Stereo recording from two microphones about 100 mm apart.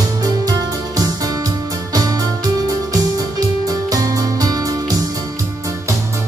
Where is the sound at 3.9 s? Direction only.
35° right (ahead or behind).